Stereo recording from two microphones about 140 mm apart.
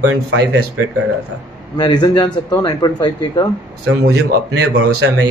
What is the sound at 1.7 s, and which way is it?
Speech, 30° left (ahead or behind).